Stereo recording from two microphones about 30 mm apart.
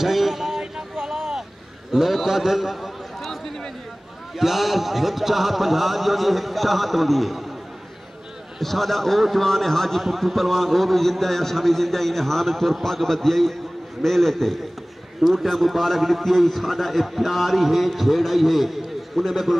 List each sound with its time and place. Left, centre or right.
0.0 s a sound: centre
1.9 s a man's voice: centre
4.4 s a man's voice: centre
8.5 s a man's voice: centre